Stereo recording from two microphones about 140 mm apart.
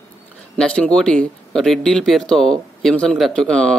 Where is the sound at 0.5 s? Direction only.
10° left (ahead or behind).